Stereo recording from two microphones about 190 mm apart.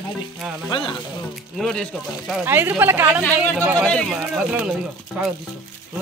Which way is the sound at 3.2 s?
10° left (ahead or behind).